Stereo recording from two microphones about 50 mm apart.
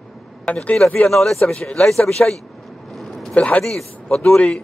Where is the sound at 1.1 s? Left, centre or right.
Centre.